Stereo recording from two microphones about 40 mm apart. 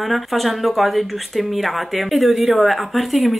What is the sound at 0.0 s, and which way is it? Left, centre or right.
Speech, centre.